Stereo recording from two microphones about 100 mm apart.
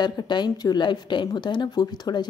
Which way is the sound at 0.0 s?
45° left (ahead or behind).